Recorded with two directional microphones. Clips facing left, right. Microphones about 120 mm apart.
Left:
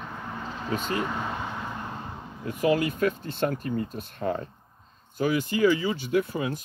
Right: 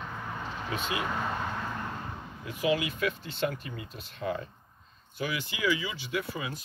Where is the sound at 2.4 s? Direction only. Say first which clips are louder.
Left 5 dB; 45° left (ahead or behind).